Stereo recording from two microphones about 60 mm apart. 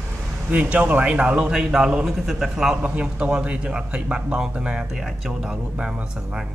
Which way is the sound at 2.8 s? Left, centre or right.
Right.